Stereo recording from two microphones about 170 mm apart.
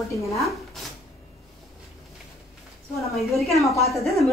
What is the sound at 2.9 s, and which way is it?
Speech, centre (ahead or behind).